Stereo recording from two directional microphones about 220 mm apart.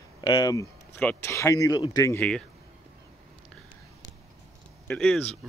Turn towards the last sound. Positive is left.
turn(degrees=5)  # may be behind; listen again after turning